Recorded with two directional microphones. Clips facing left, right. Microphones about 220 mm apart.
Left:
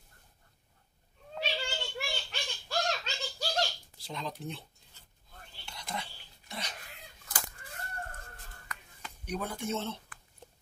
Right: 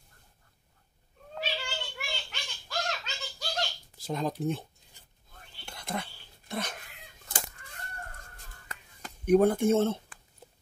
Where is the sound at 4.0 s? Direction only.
50° right (ahead or behind).